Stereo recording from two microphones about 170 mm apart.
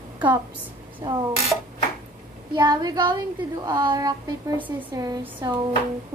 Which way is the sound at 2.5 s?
25° right (ahead or behind).